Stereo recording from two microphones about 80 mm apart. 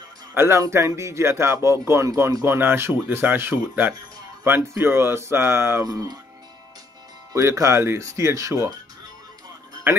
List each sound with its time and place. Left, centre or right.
0.3 s speech: right
5.9 s speech: right
7.3 s speech: right